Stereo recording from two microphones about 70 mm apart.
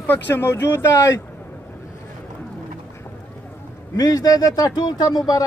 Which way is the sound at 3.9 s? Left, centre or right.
Left.